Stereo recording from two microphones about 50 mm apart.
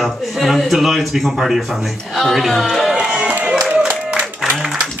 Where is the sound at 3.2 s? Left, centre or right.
Right.